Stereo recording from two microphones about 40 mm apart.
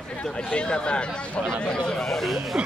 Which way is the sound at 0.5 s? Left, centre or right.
Left.